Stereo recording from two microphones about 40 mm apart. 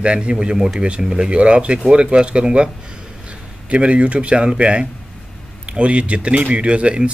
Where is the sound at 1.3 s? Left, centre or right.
Right.